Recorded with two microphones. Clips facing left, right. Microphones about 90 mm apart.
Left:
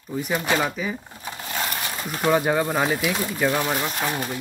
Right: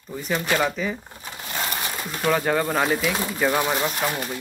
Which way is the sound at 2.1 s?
15° left (ahead or behind).